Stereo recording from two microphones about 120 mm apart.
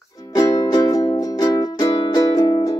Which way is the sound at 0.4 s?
30° left (ahead or behind).